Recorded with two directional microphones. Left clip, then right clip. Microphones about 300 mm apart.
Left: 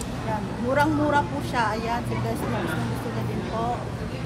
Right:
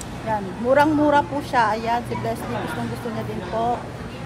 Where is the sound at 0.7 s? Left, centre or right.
Right.